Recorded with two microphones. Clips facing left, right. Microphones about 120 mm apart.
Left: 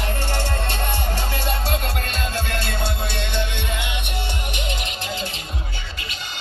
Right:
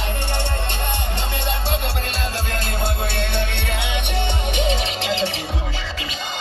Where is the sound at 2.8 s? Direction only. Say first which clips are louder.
Right 3 dB; 55° right (ahead or behind).